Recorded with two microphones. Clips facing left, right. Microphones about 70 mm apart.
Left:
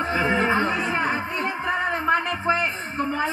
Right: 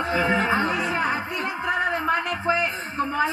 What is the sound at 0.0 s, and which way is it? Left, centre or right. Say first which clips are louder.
Music: even; left.